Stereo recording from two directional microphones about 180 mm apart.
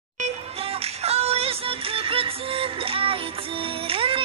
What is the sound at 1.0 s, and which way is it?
Music, 35° right (ahead or behind).